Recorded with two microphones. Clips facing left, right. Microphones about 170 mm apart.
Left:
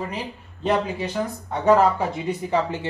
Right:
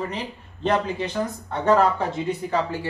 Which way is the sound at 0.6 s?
10° left (ahead or behind).